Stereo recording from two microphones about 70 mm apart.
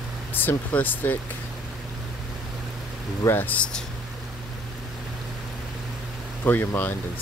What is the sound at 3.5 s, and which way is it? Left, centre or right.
Speech, centre.